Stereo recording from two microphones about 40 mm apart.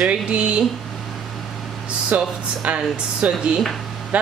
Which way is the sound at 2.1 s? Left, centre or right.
Right.